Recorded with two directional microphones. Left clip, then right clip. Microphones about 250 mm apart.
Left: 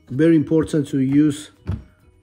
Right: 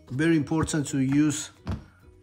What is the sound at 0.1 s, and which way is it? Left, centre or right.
Speech, centre.